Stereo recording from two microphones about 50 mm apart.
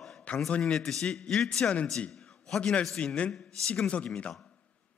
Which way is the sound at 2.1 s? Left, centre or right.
Centre.